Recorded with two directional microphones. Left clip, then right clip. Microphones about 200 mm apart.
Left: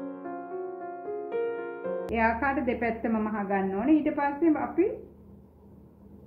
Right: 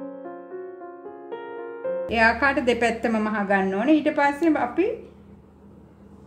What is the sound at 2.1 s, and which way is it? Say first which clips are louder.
A woman's voice: right 7 dB; 55° right (ahead or behind).